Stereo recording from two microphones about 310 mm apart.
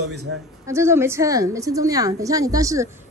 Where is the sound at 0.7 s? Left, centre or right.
Centre.